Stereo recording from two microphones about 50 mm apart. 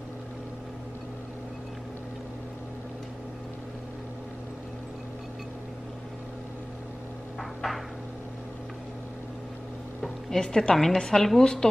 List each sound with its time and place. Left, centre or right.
7.3 s cupboard open or close: centre
10.3 s a woman's voice: centre